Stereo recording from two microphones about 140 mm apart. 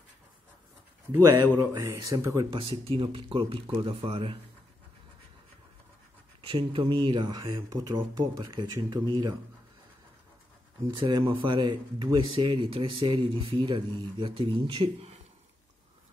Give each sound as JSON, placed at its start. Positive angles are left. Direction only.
{"t": 1.7, "sound": "speech", "side_deg": -25}
{"t": 2.5, "sound": "speech", "side_deg": -35}
{"t": 6.4, "sound": "speech", "side_deg": -35}
{"t": 10.9, "sound": "speech", "side_deg": -30}